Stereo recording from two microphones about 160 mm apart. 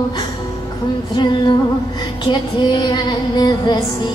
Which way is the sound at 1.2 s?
30° left (ahead or behind).